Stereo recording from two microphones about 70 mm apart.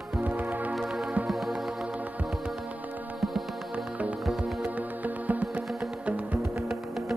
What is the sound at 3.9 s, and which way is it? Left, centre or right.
Music, right.